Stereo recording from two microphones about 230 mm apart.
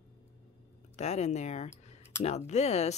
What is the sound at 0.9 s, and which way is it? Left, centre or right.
Speech, left.